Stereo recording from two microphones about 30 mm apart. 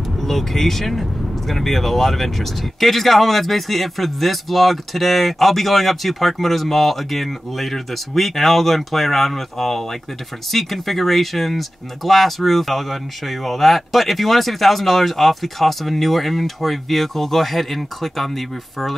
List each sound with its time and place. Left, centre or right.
0.2 s speech: centre